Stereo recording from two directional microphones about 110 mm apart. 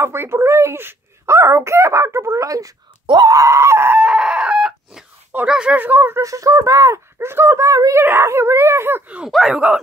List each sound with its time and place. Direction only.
0.0 s speech: 20° right (ahead or behind)
4.0 s chicken: 10° right (ahead or behind)
5.3 s speech: 10° right (ahead or behind)